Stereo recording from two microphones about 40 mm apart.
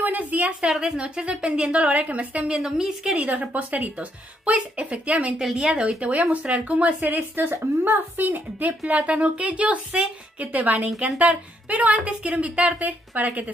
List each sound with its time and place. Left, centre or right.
0.0 s a sound: right
0.7 s a woman's voice: centre
0.9 s a woman's voice: right
2.0 s a woman's voice: right
2.5 s a woman's voice: centre
3.2 s a woman's voice: right
5.4 s a woman's voice: centre
5.9 s a woman's voice: right
7.5 s a woman's voice: right
8.8 s a woman's voice: right